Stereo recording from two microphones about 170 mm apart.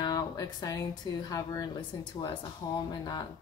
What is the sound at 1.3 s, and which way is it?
Speech, 20° left (ahead or behind).